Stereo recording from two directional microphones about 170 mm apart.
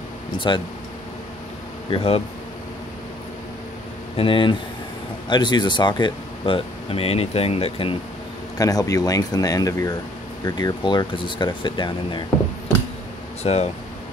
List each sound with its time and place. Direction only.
0.5 s speech: 25° left (ahead or behind)
1.9 s speech: 35° left (ahead or behind)
4.2 s speech: 30° left (ahead or behind)
8.5 s speech: 20° left (ahead or behind)
13.4 s speech: 40° left (ahead or behind)